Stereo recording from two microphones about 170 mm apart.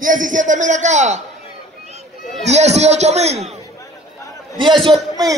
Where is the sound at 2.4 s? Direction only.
40° right (ahead or behind).